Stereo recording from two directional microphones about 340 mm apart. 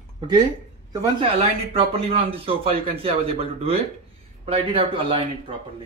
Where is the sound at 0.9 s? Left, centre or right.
Centre.